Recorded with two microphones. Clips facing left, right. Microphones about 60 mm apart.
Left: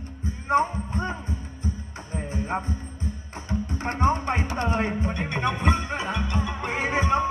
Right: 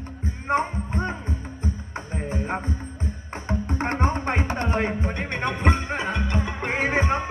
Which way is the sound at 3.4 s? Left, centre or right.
Right.